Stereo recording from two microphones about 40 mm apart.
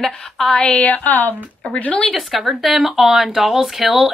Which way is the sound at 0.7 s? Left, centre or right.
Left.